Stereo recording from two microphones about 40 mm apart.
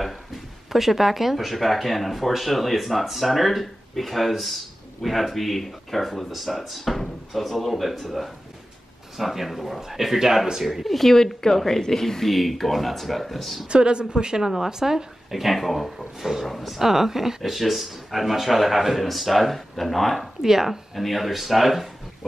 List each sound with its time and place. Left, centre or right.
0.7 s a man's voice: centre
13.7 s speech: right
15.4 s a man's voice: centre
20.4 s a man's voice: centre